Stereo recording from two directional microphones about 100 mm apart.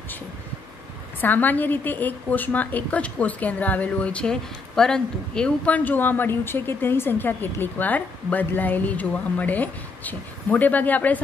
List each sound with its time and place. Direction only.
1.2 s a woman's voice: 15° left (ahead or behind)